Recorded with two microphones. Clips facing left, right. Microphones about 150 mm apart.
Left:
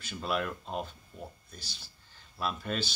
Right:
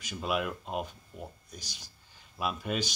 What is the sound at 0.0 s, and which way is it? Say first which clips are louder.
Speech: right 1 dB; 10° right (ahead or behind).